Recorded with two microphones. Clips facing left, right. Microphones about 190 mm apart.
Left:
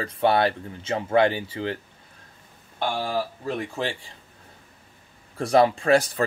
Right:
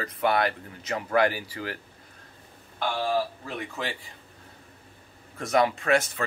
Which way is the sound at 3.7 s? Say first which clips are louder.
Left 5 dB; 30° left (ahead or behind).